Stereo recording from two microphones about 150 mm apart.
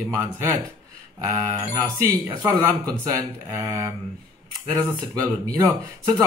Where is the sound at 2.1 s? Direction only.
25° right (ahead or behind).